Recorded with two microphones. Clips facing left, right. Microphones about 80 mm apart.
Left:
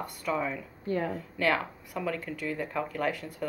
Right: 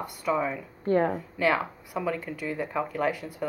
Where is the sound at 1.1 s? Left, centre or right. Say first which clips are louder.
Right 3 dB; centre.